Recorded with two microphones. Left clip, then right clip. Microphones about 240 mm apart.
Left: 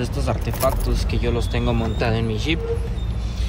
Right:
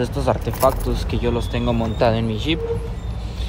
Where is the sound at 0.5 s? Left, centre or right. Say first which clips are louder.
Right 1 dB; centre.